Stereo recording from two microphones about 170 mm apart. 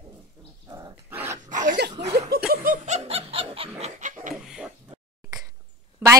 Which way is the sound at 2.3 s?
65° right (ahead or behind).